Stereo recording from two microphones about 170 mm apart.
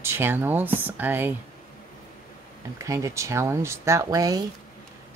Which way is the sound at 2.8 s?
20° right (ahead or behind).